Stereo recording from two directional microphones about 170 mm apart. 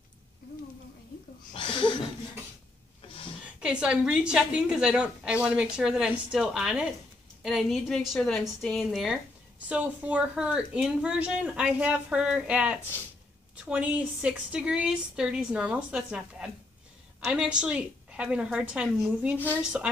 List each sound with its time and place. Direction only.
1.5 s speech: 30° left (ahead or behind)
3.4 s a woman's voice: 5° right (ahead or behind)